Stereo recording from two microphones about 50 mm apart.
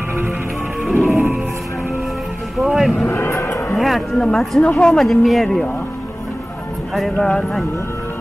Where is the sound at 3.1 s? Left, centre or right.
Left.